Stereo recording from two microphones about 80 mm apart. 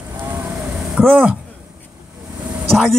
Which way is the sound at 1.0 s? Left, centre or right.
Right.